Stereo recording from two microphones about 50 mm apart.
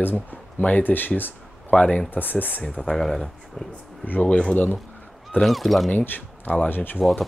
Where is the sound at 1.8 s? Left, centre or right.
Left.